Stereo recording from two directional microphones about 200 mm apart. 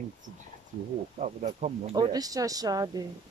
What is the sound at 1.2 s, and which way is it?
Speech, 35° right (ahead or behind).